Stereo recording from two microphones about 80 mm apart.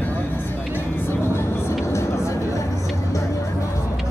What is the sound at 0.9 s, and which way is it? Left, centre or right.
Vehicle, left.